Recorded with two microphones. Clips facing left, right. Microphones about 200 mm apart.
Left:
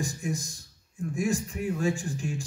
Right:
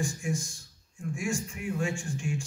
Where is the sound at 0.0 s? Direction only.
35° left (ahead or behind).